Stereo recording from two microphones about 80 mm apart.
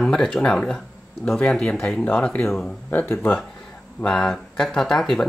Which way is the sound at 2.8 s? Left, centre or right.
Left.